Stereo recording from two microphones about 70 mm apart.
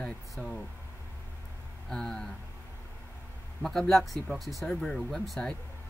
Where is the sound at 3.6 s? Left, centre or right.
Centre.